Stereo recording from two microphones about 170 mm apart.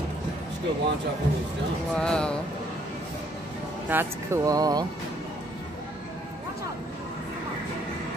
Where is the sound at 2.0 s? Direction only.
5° left (ahead or behind).